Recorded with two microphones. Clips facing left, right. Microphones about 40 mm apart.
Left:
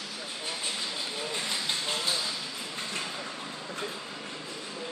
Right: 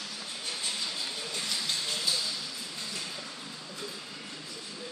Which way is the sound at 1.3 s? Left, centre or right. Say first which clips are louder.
Left 1 dB; left.